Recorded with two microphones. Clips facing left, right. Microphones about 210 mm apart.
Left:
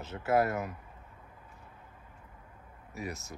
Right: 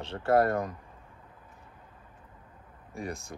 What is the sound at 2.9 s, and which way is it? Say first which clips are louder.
Speech: right 2 dB; 5° left (ahead or behind).